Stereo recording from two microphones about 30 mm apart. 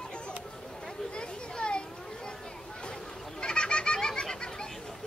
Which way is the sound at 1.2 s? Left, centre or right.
Left.